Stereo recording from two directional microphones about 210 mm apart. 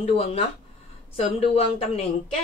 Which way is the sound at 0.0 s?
30° left (ahead or behind).